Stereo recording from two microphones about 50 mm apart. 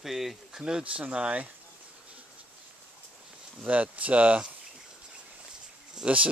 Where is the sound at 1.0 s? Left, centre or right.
Right.